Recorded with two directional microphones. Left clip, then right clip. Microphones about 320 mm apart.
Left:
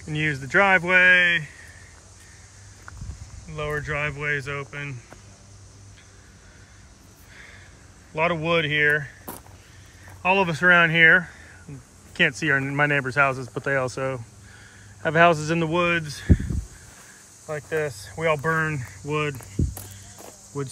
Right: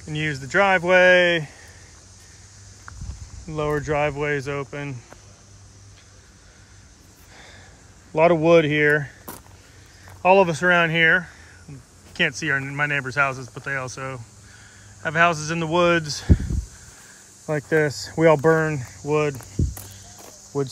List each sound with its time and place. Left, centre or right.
0.0 s speech: centre
3.5 s speech: centre
8.2 s speech: centre
10.2 s speech: centre
17.6 s speech: right
17.9 s a sound: centre